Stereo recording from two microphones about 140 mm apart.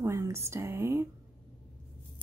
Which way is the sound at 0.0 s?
20° right (ahead or behind).